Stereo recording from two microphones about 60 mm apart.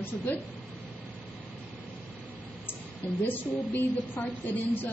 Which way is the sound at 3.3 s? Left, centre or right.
Left.